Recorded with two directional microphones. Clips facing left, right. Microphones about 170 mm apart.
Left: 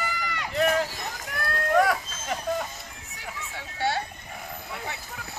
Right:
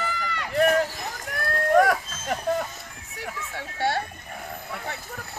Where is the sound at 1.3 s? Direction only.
45° right (ahead or behind).